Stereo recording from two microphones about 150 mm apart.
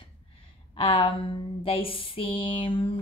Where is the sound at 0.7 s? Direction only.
35° left (ahead or behind).